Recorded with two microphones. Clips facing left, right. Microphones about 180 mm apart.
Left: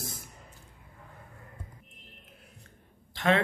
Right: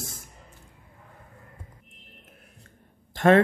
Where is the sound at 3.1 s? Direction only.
50° right (ahead or behind).